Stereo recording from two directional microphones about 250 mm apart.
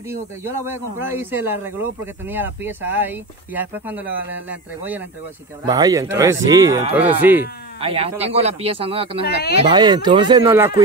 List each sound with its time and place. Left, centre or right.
0.4 s speech: centre
7.8 s speech: right
9.2 s speech: left
9.6 s speech: centre